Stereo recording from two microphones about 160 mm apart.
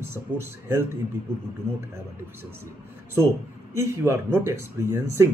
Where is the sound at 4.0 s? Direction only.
15° right (ahead or behind).